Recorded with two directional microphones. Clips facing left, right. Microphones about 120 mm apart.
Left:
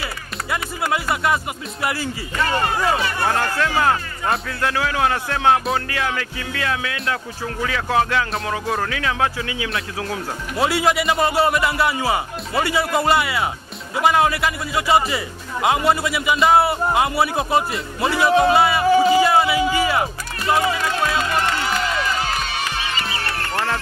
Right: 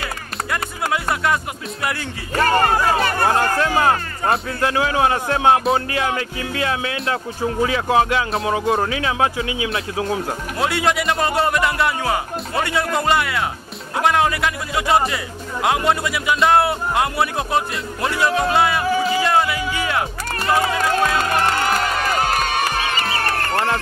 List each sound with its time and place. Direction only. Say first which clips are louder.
0.5 s a man's voice: even; centre (ahead or behind)
2.3 s speech: right 5 dB; 45° right (ahead or behind)
3.5 s speech: right 2 dB; 25° right (ahead or behind)
10.6 s a man's voice: left 1 dB; centre (ahead or behind)
20.7 s music: right 3 dB; 50° right (ahead or behind)